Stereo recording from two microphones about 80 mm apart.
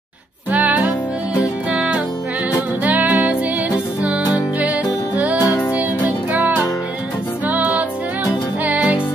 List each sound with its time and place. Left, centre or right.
0.5 s music: centre